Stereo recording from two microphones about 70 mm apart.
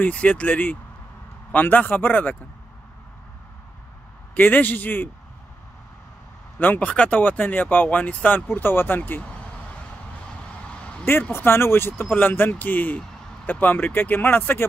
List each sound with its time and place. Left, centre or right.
0.1 s speech: centre
4.4 s speech: left
6.6 s speech: left
10.7 s vehicle: centre
11.3 s speech: left